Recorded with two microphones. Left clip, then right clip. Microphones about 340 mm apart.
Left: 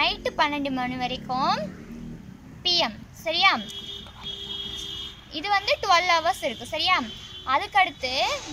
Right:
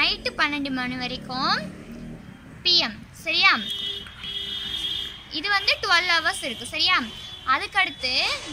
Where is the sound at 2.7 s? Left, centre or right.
Centre.